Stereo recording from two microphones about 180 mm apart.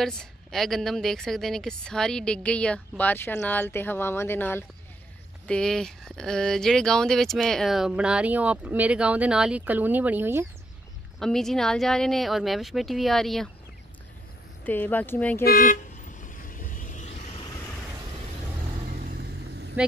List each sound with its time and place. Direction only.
0.0 s speech: 5° left (ahead or behind)
11.1 s speech: centre (ahead or behind)
14.6 s speech: 10° left (ahead or behind)
15.4 s vehicle: 50° left (ahead or behind)
18.9 s vehicle: 60° right (ahead or behind)